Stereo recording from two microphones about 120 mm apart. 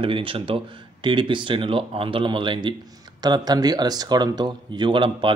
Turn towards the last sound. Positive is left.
turn(degrees=-40)  # may be behind; listen again after turning